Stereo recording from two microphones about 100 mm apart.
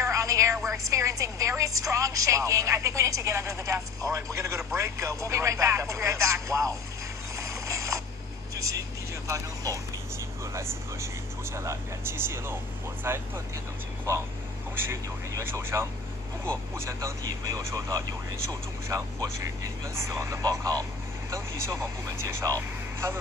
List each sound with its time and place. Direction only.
0.0 s a sound: 30° right (ahead or behind)
0.7 s a woman's voice: 30° right (ahead or behind)
7.3 s mechanisms: 30° right (ahead or behind)
8.5 s vehicle: 30° right (ahead or behind)
11.5 s speech: 30° right (ahead or behind)
14.9 s a woman's voice: 25° right (ahead or behind)